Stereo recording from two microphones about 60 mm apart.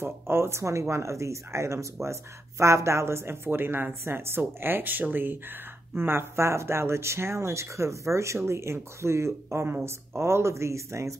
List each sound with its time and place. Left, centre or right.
0.0 s speech: right